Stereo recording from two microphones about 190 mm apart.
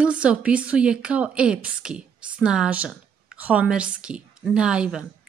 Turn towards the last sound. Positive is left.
turn(degrees=-5)  # may be behind; listen again after turning